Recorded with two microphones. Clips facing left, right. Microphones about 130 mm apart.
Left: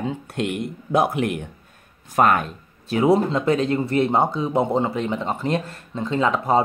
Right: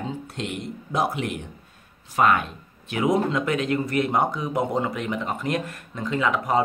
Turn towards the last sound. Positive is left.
turn(degrees=30)  # may be behind; listen again after turning